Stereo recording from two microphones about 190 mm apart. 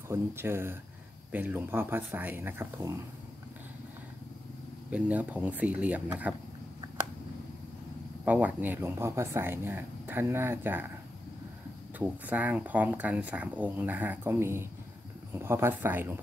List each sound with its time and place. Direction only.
0.1 s speech: 10° right (ahead or behind)
4.9 s speech: 5° right (ahead or behind)
8.3 s speech: 10° right (ahead or behind)
12.0 s speech: 10° right (ahead or behind)